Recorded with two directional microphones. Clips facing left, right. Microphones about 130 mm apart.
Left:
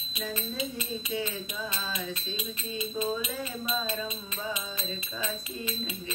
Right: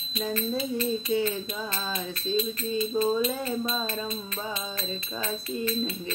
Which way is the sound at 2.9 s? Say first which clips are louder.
Right 6 dB; 35° right (ahead or behind).